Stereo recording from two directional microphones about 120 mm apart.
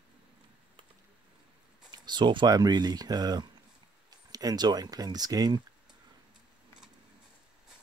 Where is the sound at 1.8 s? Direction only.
40° right (ahead or behind).